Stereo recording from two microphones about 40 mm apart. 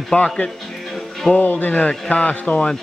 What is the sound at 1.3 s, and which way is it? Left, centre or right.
Speech, left.